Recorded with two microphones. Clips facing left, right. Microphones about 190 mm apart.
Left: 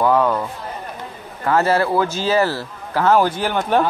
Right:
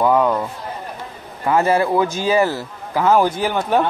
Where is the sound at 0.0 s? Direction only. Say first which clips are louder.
Right 1 dB; 10° right (ahead or behind).